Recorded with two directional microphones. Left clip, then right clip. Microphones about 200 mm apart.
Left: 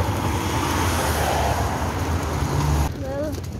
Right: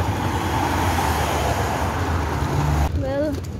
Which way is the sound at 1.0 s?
50° right (ahead or behind).